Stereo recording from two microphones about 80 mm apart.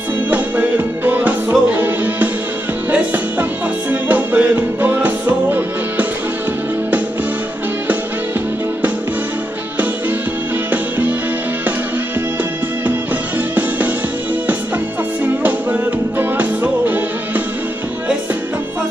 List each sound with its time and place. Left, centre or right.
0.3 s music: right
10.7 s music: centre
13.6 s music: right
15.2 s music: right